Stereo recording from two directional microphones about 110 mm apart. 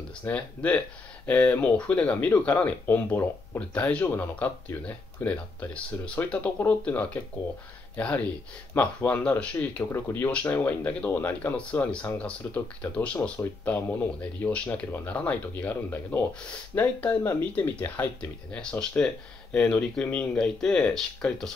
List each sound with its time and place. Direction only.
0.2 s speech: 15° left (ahead or behind)